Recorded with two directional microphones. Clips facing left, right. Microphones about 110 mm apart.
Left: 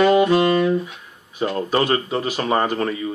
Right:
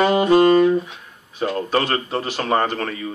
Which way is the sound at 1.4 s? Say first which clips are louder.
Left 1 dB; 10° left (ahead or behind).